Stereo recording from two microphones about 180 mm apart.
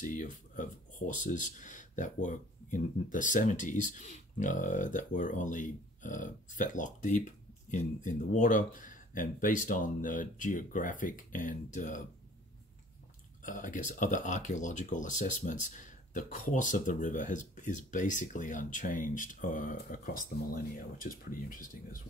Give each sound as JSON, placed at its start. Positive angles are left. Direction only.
{"t": 0.0, "sound": "speech", "side_deg": 45}
{"t": 13.4, "sound": "speech", "side_deg": 45}